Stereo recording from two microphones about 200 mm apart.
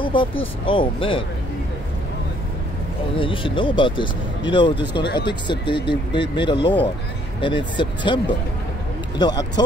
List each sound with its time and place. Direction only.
0.0 s speech: 25° left (ahead or behind)
3.2 s speech: 25° left (ahead or behind)